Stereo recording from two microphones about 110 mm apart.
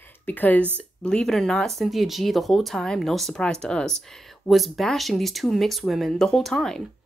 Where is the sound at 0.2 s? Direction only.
15° left (ahead or behind).